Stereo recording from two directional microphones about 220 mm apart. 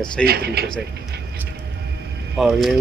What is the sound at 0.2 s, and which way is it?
Speech, 45° right (ahead or behind).